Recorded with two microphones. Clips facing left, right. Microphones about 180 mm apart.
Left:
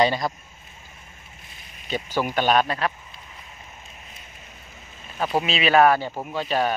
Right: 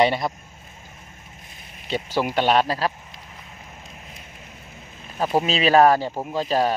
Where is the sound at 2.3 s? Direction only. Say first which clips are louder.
Right 1 dB; 25° right (ahead or behind).